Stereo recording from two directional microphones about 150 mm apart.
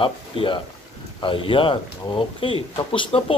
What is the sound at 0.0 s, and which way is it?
Speech, 35° left (ahead or behind).